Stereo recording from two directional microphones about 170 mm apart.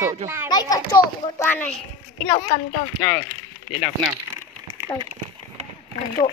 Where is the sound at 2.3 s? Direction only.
40° left (ahead or behind).